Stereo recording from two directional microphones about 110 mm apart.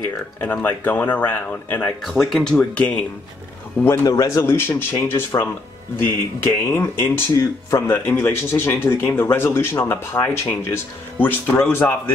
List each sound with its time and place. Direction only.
0.4 s speech: 15° left (ahead or behind)
2.3 s speech: 5° left (ahead or behind)
3.8 s speech: 25° left (ahead or behind)